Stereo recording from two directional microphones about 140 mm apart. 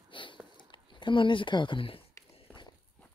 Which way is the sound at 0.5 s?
35° left (ahead or behind).